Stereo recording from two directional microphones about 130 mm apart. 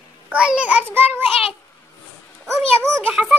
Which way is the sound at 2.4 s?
Centre (ahead or behind).